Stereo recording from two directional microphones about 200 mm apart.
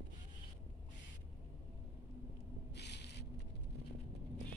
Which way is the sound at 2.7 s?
55° left (ahead or behind).